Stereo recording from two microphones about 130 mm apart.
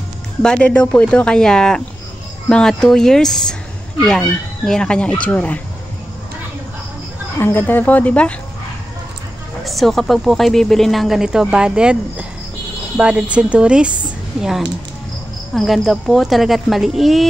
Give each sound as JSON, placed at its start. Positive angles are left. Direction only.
{"t": 0.4, "sound": "speech", "side_deg": 5}
{"t": 7.3, "sound": "speech", "side_deg": 15}
{"t": 9.7, "sound": "a woman's voice", "side_deg": 0}